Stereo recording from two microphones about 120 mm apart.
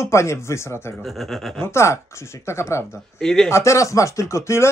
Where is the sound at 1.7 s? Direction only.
25° left (ahead or behind).